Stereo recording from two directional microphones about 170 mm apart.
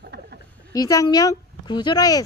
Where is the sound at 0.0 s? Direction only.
75° right (ahead or behind).